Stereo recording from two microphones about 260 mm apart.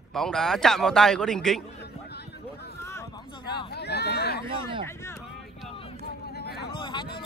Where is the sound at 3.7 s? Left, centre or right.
Left.